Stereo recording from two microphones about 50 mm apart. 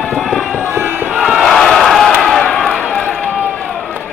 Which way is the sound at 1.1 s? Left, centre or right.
Centre.